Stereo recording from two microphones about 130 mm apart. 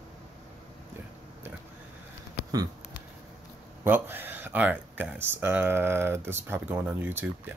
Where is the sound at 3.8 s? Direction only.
15° right (ahead or behind).